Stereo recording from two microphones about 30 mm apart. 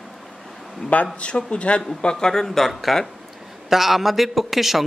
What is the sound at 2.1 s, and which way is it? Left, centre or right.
A man's voice, centre.